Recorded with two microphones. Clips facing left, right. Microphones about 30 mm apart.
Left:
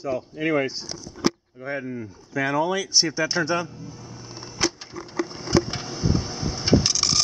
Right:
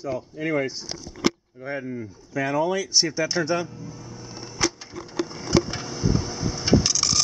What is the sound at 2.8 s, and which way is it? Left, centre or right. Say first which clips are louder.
Vehicle: left 1 dB; centre.